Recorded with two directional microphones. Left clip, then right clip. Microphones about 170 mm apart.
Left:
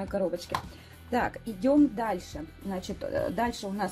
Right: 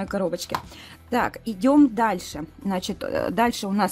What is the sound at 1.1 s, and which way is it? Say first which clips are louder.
Speech: right 5 dB; 30° right (ahead or behind).